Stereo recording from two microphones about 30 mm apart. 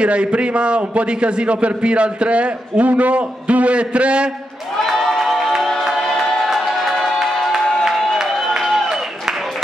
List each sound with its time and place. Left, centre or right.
0.0 s a man's voice: right
4.9 s crowd: centre
5.2 s music: centre
5.9 s music: centre
6.6 s music: centre
8.6 s a sound: centre